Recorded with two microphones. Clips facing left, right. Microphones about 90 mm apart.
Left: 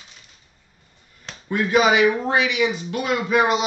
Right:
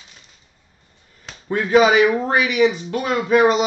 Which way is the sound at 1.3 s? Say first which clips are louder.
Even; 5° right (ahead or behind).